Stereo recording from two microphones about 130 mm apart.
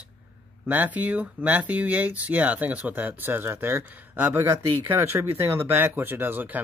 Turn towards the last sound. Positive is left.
turn(degrees=-15)  # may be behind; listen again after turning